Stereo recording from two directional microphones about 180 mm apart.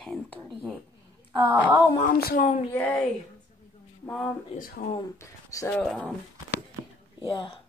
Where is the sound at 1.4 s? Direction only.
10° right (ahead or behind).